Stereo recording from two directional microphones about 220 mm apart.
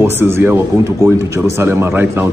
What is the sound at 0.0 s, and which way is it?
A man's voice, 10° right (ahead or behind).